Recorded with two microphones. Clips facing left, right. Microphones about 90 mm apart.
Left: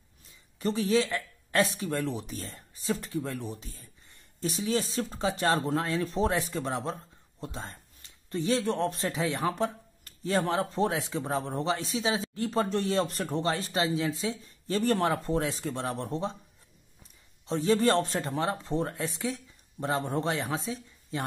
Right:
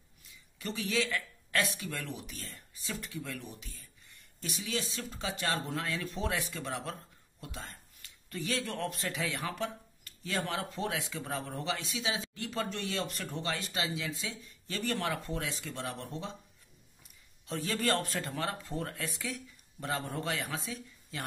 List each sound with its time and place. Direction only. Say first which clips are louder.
0.3 s speech: left 9 dB; 35° left (ahead or behind)
17.5 s a man's voice: left 8 dB; 25° left (ahead or behind)